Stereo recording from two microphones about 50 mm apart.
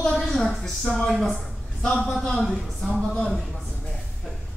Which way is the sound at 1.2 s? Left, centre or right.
Centre.